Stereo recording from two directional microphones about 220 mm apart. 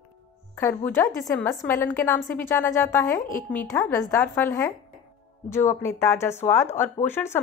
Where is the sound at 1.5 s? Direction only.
5° left (ahead or behind).